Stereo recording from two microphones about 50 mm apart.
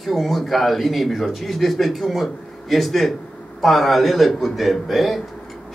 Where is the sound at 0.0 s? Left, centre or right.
Centre.